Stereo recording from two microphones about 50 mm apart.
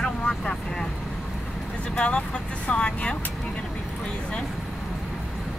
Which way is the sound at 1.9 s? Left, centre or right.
Centre.